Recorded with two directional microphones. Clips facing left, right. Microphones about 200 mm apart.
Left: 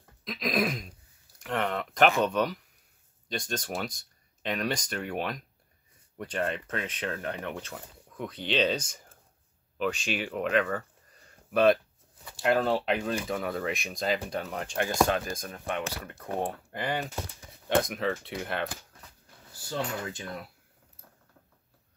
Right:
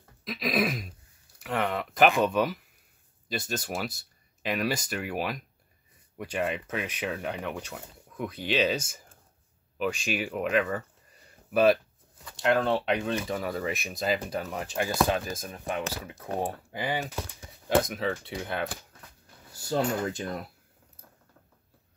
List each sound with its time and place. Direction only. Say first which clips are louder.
0.2 s throat clearing: right 1 dB; 5° right (ahead or behind)
1.4 s a sound: right 1 dB; centre (ahead or behind)
2.1 s speech: right 1 dB; 5° right (ahead or behind)
19.7 s speech: right 6 dB; 40° right (ahead or behind)